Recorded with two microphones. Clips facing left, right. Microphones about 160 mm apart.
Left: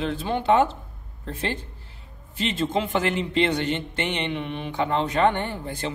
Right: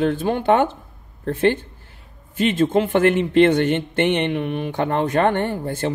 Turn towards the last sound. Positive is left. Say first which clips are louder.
# right 3 dB
turn(degrees=-50)  # may be behind; listen again after turning